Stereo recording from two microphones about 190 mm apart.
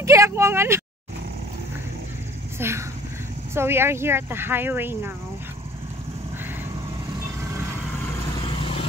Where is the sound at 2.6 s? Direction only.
10° right (ahead or behind).